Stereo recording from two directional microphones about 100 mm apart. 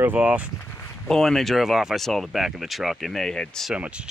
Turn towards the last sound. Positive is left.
turn(degrees=5)  # may be behind; listen again after turning